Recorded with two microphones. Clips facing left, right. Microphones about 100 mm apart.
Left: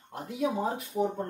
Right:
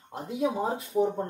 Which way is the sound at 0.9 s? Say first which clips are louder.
Right 4 dB; 30° right (ahead or behind).